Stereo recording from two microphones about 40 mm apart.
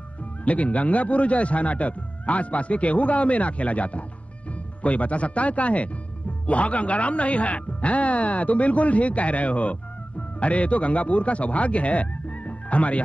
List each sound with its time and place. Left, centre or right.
0.5 s speech: left